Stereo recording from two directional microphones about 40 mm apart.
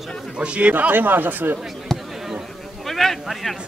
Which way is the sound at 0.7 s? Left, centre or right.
Right.